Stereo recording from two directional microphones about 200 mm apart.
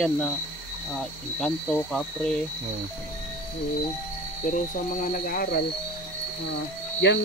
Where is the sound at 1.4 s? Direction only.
5° left (ahead or behind).